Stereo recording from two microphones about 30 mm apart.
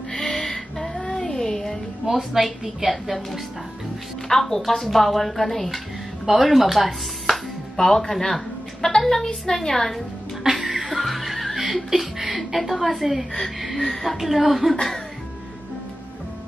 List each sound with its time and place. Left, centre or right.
0.1 s music: centre
1.1 s a sound: centre
2.0 s a woman's voice: centre
4.3 s a woman's voice: centre
7.7 s a woman's voice: centre
10.4 s music: centre
10.9 s chuckle: centre
13.6 s speech: centre